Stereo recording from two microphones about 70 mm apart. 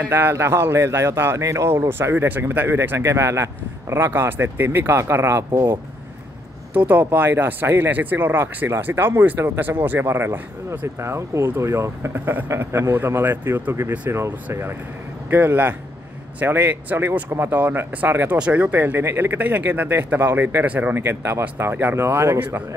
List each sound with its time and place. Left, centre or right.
0.1 s speech: right
1.4 s speech: right
1.7 s speech: right
3.0 s speech: right
6.7 s speech: right
9.2 s speech: right
11.0 s speech: right
12.1 s speech: right
12.4 s speech: right
14.1 s speech: right
21.0 s speech: right